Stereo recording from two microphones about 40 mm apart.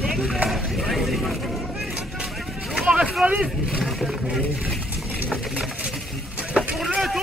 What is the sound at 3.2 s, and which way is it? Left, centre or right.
Speech, right.